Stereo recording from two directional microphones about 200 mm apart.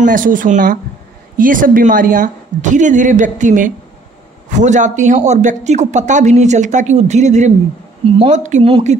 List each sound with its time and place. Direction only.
0.0 s speech: 40° right (ahead or behind)